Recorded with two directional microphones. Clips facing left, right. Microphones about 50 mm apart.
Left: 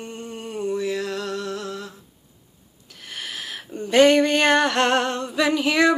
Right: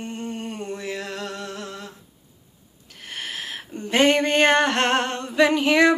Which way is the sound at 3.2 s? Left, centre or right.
Right.